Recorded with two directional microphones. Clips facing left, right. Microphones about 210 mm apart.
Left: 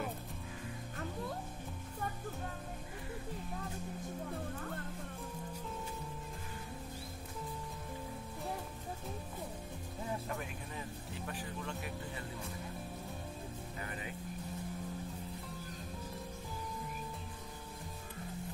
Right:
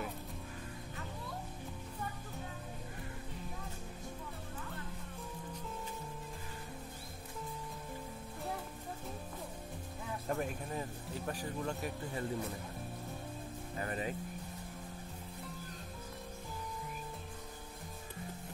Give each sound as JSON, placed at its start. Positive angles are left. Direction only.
{"t": 10.2, "sound": "music", "side_deg": -40}
{"t": 13.7, "sound": "speech", "side_deg": -40}